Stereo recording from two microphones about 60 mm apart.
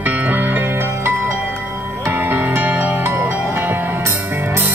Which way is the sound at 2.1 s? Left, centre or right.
Right.